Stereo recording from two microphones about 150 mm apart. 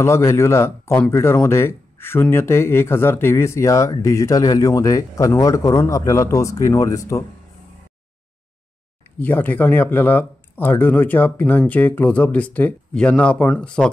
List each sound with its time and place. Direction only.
0.0 s speech: 20° left (ahead or behind)
9.2 s speech: 10° left (ahead or behind)